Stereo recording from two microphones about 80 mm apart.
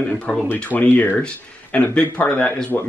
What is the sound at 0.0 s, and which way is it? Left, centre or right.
Speech, centre.